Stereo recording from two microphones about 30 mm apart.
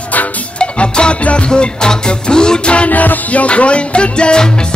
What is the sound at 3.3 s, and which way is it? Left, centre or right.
Music, left.